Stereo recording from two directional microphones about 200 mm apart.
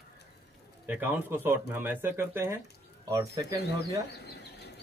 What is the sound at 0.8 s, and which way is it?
Speech, 10° right (ahead or behind).